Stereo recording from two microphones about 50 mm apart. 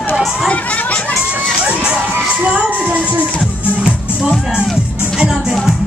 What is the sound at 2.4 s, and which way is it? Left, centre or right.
Speech, right.